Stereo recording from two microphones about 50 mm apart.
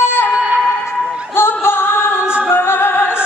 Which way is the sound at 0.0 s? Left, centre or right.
Left.